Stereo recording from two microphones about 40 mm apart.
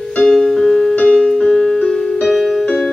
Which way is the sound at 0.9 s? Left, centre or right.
Centre.